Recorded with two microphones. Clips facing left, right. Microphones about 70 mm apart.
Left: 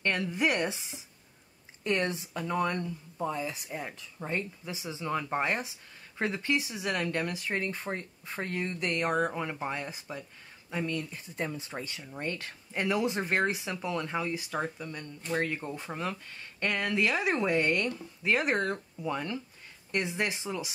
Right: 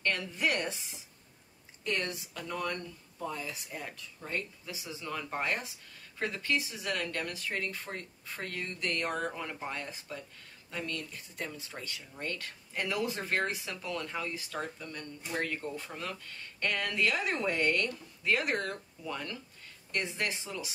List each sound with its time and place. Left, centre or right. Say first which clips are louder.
0.0 s speech: left 3 dB; left
1.9 s speech: left 5 dB; left